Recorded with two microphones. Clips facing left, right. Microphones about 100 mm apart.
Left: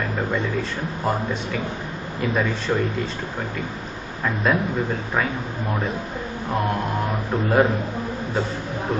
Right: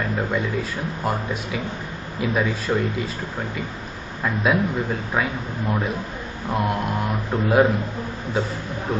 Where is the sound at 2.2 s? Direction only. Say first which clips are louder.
Even; centre (ahead or behind).